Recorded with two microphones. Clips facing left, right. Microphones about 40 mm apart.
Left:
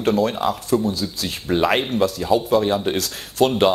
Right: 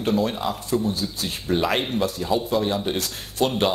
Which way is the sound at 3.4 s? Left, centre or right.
Left.